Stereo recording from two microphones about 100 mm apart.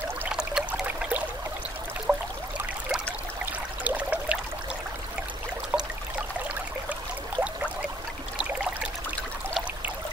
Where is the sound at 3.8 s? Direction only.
15° right (ahead or behind).